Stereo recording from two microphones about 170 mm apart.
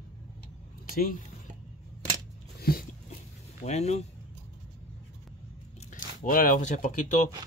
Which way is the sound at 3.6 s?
40° left (ahead or behind).